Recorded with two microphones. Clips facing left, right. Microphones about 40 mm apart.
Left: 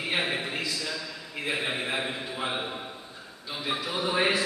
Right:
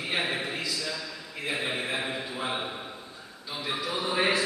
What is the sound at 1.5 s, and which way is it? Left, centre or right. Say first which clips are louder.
A man's voice: left 1 dB; centre.